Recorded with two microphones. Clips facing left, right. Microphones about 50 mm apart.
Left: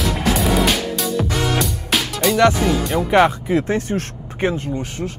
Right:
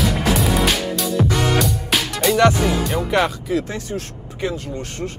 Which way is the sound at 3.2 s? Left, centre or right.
Left.